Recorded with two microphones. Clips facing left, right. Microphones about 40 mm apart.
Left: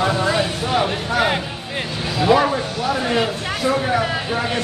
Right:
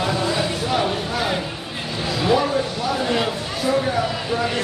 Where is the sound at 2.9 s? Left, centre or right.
Left.